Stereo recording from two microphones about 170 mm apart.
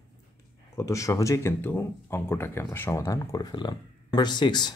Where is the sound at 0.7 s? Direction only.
15° left (ahead or behind).